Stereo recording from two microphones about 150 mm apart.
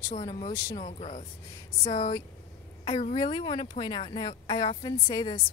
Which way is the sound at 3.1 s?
30° left (ahead or behind).